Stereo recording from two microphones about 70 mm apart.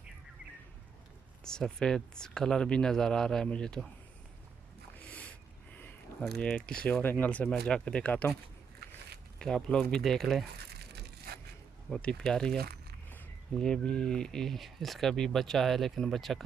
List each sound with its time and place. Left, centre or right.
1.4 s speech: centre
4.9 s a sound: left
6.3 s speech: centre
7.0 s speech: left
7.4 s speech: centre
9.4 s speech: centre
11.9 s speech: centre
13.6 s speech: centre